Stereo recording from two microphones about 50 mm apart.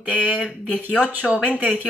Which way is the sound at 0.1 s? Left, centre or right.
Right.